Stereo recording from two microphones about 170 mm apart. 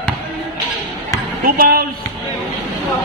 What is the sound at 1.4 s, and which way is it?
Basketball bounce, 60° right (ahead or behind).